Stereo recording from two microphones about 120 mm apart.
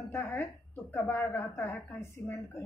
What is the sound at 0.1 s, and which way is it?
A woman's voice, 20° left (ahead or behind).